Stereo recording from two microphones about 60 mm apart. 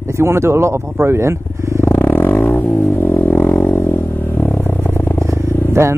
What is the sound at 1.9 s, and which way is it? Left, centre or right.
Music, left.